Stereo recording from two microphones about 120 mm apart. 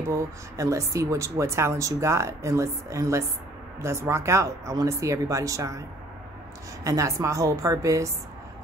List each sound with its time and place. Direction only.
0.1 s speech: 25° right (ahead or behind)